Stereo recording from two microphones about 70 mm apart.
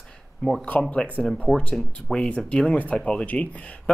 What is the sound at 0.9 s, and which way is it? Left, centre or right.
Speech, left.